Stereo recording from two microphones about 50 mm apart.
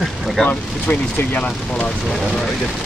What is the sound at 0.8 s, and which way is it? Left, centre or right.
Speech, left.